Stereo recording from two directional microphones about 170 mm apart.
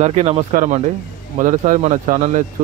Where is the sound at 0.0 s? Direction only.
40° right (ahead or behind).